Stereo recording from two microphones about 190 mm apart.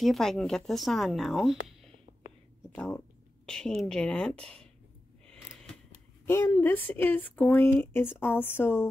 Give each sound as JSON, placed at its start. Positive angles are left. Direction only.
{"t": 0.0, "sound": "speech", "side_deg": 0}